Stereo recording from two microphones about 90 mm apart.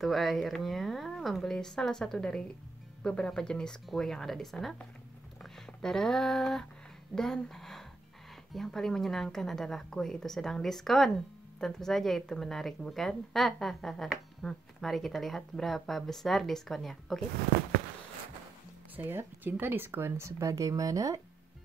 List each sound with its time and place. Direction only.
0.0 s a woman's voice: centre (ahead or behind)
18.9 s speech: 20° right (ahead or behind); by 21.2 s 40° right (ahead or behind)